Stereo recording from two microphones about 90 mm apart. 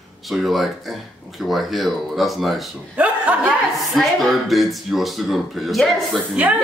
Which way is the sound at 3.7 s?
Centre (ahead or behind).